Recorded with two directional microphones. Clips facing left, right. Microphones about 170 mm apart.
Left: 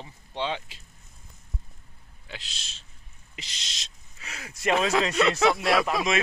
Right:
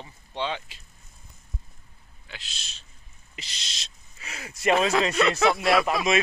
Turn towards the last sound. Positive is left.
turn(degrees=-5)  # may be behind; listen again after turning